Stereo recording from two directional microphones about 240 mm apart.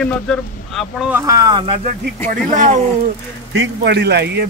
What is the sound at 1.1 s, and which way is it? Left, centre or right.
Speech, centre.